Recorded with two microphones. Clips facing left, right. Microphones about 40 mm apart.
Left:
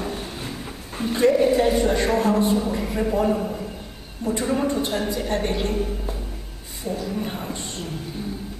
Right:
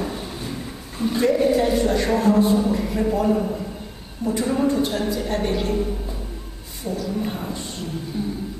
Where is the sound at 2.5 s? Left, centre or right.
Centre.